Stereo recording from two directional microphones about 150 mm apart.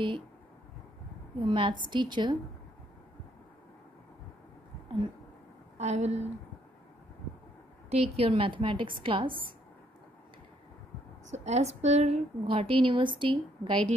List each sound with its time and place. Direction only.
1.4 s a woman's voice: 35° right (ahead or behind)
5.8 s a woman's voice: 45° right (ahead or behind)
7.9 s a woman's voice: 40° right (ahead or behind)
11.2 s a woman's voice: 50° right (ahead or behind)